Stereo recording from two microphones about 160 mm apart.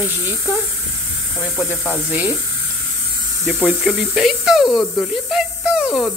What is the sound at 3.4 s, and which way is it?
Speech, centre (ahead or behind).